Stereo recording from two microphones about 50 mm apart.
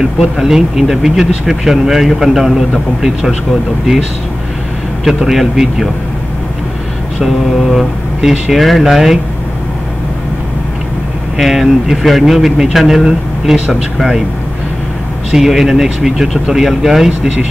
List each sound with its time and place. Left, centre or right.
0.0 s speech: centre
5.0 s speech: centre
7.2 s speech: centre
11.3 s speech: centre
15.3 s speech: centre